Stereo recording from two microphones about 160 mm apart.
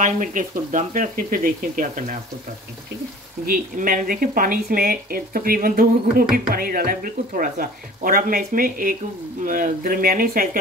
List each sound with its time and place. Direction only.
0.0 s speech: 55° right (ahead or behind)
3.4 s speech: 60° right (ahead or behind)